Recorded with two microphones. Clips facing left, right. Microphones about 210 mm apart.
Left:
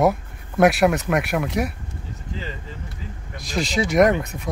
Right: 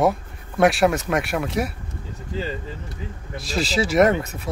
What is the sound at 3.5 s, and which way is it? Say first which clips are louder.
Speech: even; 30° right (ahead or behind).